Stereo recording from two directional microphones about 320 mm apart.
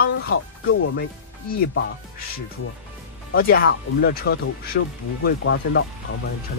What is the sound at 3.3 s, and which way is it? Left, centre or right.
Speech, left.